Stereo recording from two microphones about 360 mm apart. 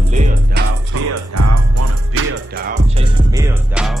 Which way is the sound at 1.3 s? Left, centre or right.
Right.